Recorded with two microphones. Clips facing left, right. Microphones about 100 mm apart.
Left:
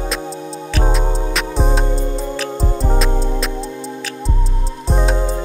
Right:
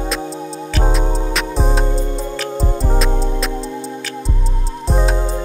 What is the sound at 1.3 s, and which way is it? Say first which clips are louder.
Music: even; centre (ahead or behind).